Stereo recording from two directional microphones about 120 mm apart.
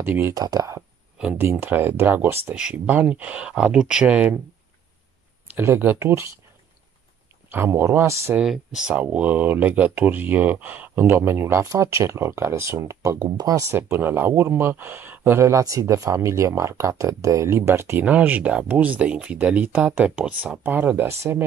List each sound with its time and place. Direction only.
0.0 s speech: 20° right (ahead or behind)
0.3 s speech: 30° right (ahead or behind)
1.1 s speech: 10° right (ahead or behind)
2.5 s speech: 10° right (ahead or behind)
5.5 s speech: 20° right (ahead or behind)
7.5 s speech: 20° right (ahead or behind)
8.4 s speech: 5° right (ahead or behind); by 21.5 s 20° right (ahead or behind)